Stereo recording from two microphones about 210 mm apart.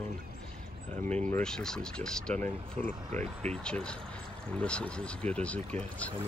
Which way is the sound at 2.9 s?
35° right (ahead or behind).